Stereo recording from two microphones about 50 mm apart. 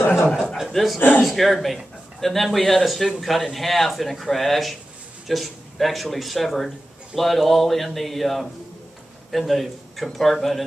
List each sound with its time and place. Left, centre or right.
0.3 s chuckle: centre
0.6 s chuckle: centre
1.2 s speech: centre